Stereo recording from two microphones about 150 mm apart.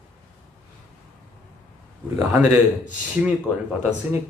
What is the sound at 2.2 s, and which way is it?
Speech, 10° right (ahead or behind).